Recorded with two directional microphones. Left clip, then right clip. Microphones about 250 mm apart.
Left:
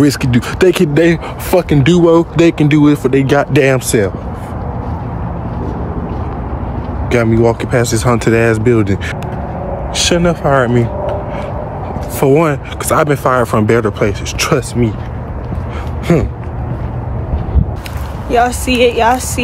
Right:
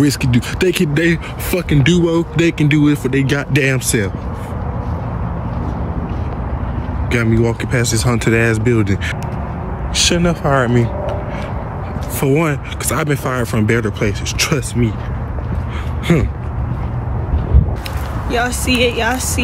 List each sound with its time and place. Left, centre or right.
0.0 s speech: centre
7.1 s speech: centre
12.2 s speech: centre
16.1 s speech: centre
18.7 s speech: left